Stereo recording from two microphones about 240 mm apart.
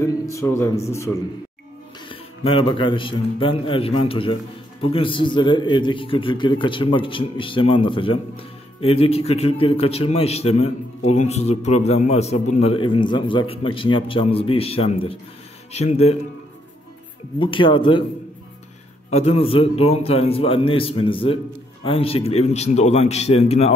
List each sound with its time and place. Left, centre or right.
0.3 s a man's voice: centre; by 16.2 s left
17.4 s a man's voice: left
19.0 s a man's voice: left